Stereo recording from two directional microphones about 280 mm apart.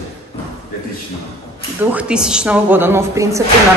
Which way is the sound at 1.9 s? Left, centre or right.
Centre.